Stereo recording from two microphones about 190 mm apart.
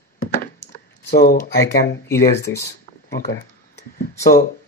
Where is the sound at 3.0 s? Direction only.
55° left (ahead or behind).